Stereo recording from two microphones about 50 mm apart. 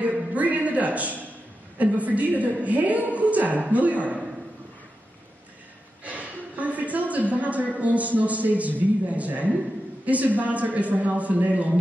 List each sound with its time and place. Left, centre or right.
0.0 s music: right
1.8 s a woman's voice: right
6.0 s a man's voice: right